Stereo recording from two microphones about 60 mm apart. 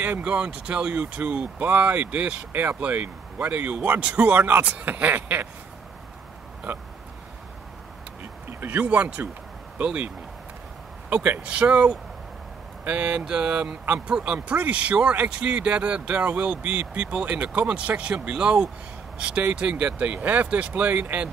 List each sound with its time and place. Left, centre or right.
0.0 s speech: right
6.7 s speech: right
8.5 s a sound: right
8.8 s speech: right
11.2 s speech: right